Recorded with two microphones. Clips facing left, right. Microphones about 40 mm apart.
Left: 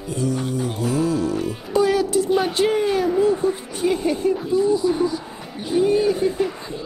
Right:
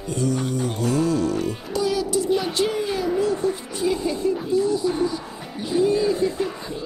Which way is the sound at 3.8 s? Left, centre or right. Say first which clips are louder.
Left 2 dB; left.